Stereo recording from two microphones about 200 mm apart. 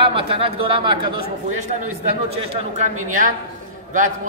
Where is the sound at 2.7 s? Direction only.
35° right (ahead or behind).